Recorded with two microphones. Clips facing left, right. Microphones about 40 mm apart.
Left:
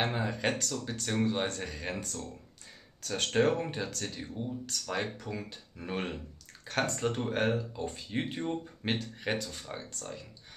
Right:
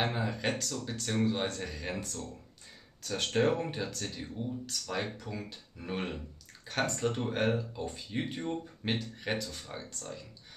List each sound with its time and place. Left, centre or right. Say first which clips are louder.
0.0 s speech: left 1 dB; centre
3.0 s speech: left 1 dB; centre
8.5 s speech: left 1 dB; centre